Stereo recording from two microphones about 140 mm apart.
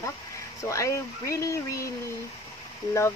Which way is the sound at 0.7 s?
20° left (ahead or behind).